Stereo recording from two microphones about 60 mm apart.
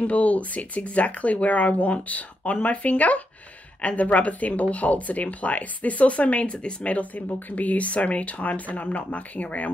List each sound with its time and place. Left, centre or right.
0.0 s speech: left